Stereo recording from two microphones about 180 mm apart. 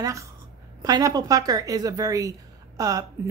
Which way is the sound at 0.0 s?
15° right (ahead or behind).